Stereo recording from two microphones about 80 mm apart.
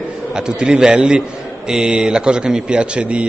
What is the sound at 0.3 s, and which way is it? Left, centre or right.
A man's voice, centre.